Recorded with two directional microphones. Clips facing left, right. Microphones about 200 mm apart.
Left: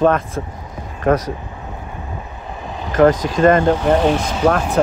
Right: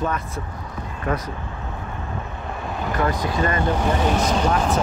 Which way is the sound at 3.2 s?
90° left.